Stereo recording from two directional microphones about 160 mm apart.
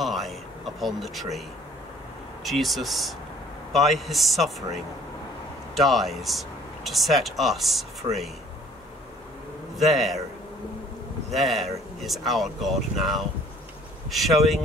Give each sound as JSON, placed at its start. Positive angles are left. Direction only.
{"t": 0.0, "sound": "a sound", "side_deg": 0}
{"t": 2.4, "sound": "speech", "side_deg": 0}
{"t": 5.8, "sound": "speech", "side_deg": 0}
{"t": 9.8, "sound": "speech", "side_deg": 0}
{"t": 11.2, "sound": "speech", "side_deg": 0}